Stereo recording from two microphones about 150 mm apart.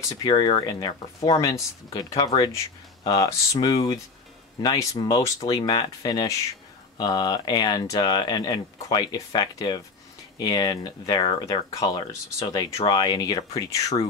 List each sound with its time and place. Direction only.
0.3 s speech: 30° left (ahead or behind)